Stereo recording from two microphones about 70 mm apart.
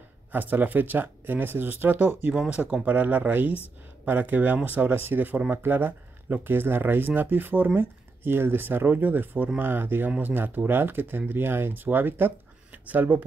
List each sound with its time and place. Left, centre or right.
0.3 s speech: right
2.3 s speech: centre